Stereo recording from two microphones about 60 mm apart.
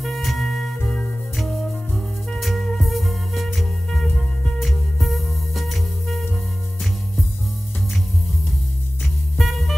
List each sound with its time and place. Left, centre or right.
0.0 s music: centre
0.8 s music: centre
2.4 s music: centre
9.0 s music: centre